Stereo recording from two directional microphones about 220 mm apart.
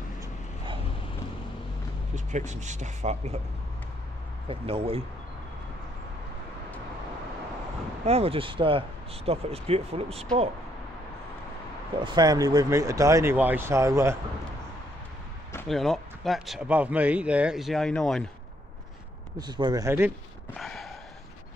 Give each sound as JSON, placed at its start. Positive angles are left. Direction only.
{"t": 2.1, "sound": "speech", "side_deg": -35}
{"t": 4.5, "sound": "speech", "side_deg": -25}
{"t": 8.0, "sound": "speech", "side_deg": -25}
{"t": 12.0, "sound": "speech", "side_deg": -20}
{"t": 15.7, "sound": "speech", "side_deg": 0}
{"t": 19.3, "sound": "speech", "side_deg": -20}
{"t": 20.5, "sound": "gasp", "side_deg": 0}